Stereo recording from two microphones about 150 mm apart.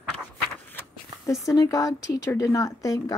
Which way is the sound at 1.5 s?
20° left (ahead or behind).